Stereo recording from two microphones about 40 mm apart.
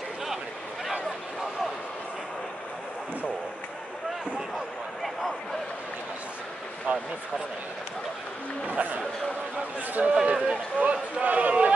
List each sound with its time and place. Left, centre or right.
6.9 s a man's voice: right
8.6 s a man's voice: right
10.0 s speech: right
10.8 s a sound: right